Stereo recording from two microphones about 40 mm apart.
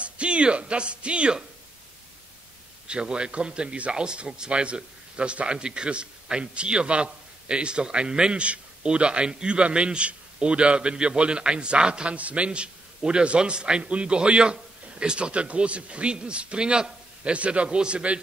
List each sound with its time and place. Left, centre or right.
0.0 s speech: right
2.9 s speech: right
12.2 s a man's voice: right
12.4 s speech: right